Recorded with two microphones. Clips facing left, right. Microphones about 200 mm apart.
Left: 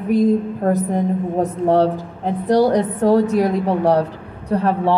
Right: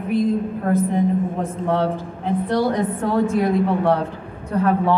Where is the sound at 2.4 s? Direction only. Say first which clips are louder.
Left 7 dB; 40° left (ahead or behind).